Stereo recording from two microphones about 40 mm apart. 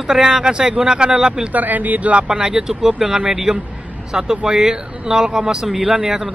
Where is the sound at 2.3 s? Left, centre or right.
Centre.